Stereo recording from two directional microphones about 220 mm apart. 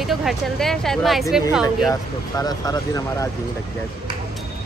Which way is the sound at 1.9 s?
15° left (ahead or behind).